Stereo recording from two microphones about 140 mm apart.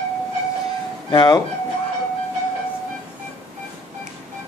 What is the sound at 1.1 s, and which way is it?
Speech, 30° left (ahead or behind).